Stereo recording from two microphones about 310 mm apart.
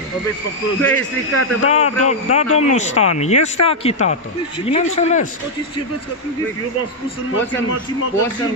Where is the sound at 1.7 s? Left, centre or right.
Centre.